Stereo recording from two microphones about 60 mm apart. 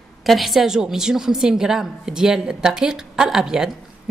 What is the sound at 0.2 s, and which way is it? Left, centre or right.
A woman's voice, centre.